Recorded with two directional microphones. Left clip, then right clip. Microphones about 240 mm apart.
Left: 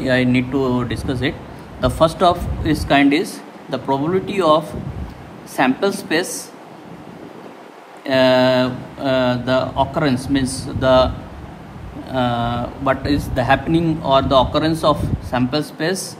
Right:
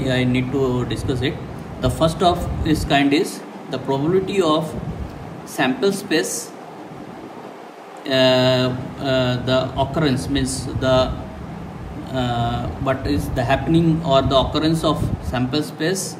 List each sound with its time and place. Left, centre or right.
0.0 s a man's voice: left
8.1 s a man's voice: left
12.1 s a man's voice: left